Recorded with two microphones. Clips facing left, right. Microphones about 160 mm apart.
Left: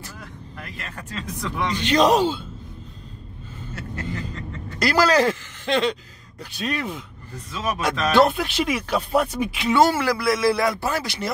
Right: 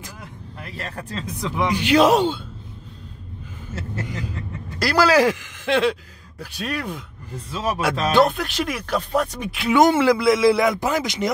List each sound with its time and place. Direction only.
0.7 s speech: 35° right (ahead or behind)
1.4 s speech: 10° right (ahead or behind)
4.1 s speech: 10° right (ahead or behind)
7.5 s a man's voice: 30° right (ahead or behind)
8.2 s speech: 5° left (ahead or behind)
9.8 s a man's voice: 20° right (ahead or behind)